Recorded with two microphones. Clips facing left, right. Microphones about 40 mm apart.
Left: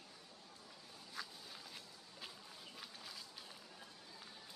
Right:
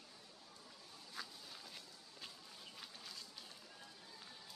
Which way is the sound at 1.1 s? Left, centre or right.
Centre.